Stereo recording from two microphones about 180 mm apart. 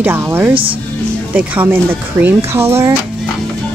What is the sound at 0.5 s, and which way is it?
Speech, 30° right (ahead or behind).